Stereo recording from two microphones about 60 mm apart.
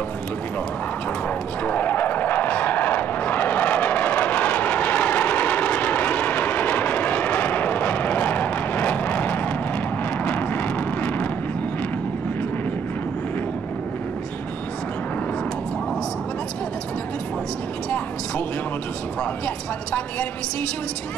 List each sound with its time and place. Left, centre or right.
1.6 s vehicle: left
19.4 s vehicle: left